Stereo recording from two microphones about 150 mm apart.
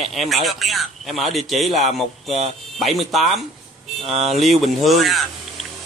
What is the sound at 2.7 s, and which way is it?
Speech, centre (ahead or behind).